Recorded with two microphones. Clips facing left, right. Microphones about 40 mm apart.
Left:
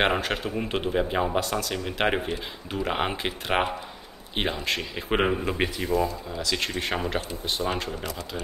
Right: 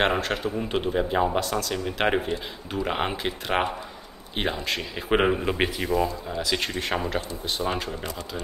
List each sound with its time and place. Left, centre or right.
0.0 s speech: centre
5.9 s speech: right
6.3 s speech: centre
6.6 s speech: centre